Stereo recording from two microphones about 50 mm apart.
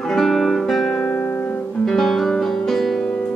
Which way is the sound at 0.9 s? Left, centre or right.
Left.